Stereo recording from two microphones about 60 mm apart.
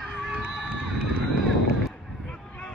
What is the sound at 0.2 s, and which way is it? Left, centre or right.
Run, centre.